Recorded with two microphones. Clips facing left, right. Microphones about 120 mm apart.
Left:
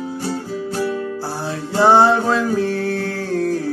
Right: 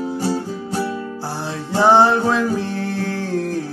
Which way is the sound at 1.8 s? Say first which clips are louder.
Left 1 dB; 10° left (ahead or behind).